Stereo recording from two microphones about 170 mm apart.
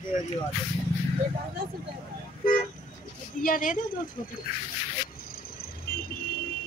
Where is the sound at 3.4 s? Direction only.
55° left (ahead or behind).